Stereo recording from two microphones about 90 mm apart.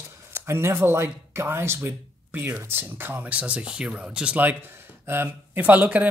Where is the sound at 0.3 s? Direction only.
30° right (ahead or behind).